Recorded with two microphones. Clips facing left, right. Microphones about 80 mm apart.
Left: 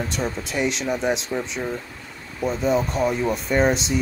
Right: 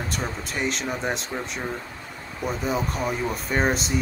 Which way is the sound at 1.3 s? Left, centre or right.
Centre.